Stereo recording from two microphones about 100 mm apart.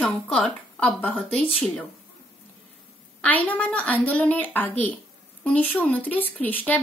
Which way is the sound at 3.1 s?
15° left (ahead or behind).